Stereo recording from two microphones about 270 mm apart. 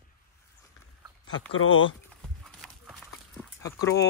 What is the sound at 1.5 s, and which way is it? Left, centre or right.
Speech, left.